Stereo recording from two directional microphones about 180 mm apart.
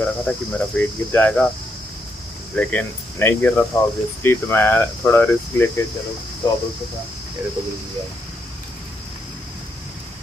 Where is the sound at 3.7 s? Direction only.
25° left (ahead or behind).